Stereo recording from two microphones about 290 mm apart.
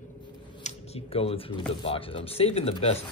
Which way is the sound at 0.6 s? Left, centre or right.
Left.